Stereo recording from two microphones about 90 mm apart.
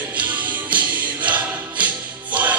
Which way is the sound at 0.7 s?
15° right (ahead or behind).